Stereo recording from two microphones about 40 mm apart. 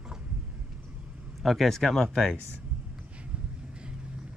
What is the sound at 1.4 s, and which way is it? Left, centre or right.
Speech, centre.